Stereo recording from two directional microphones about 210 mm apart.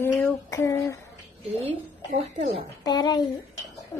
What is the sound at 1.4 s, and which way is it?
A woman's voice, 30° right (ahead or behind).